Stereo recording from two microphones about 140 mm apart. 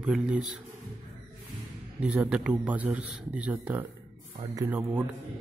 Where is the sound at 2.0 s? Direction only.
10° right (ahead or behind).